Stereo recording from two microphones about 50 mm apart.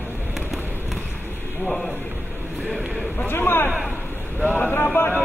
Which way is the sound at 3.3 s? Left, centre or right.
Left.